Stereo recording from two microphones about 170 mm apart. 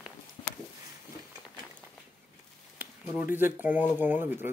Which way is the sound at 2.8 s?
10° right (ahead or behind).